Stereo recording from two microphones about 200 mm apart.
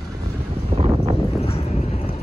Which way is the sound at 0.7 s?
30° right (ahead or behind).